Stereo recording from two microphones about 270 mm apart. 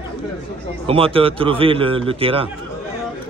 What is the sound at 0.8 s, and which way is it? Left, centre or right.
A man's voice, right.